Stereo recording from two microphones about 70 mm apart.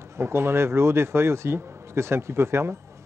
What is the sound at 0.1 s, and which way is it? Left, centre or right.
A man's voice, right.